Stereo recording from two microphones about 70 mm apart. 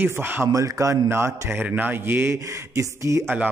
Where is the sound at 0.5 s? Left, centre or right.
Right.